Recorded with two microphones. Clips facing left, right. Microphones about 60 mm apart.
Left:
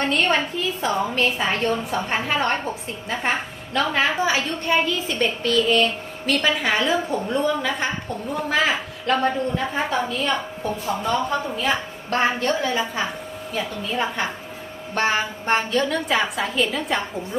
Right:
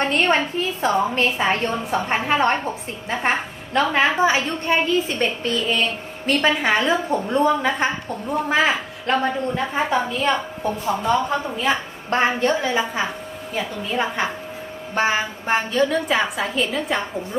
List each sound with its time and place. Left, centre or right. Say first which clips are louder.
0.0 s a woman's voice: right 2 dB; right
10.6 s a woman's voice: right 2 dB; centre